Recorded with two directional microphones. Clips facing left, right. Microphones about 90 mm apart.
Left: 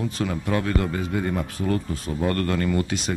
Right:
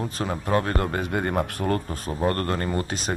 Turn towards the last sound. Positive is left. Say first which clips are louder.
# left 3 dB
turn(degrees=-35)  # may be behind; listen again after turning